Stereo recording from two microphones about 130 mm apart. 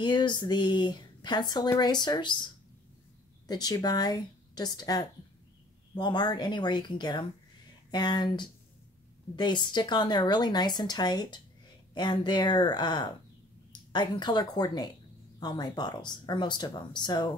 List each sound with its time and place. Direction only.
0.0 s speech: 35° left (ahead or behind)
3.4 s speech: 30° left (ahead or behind)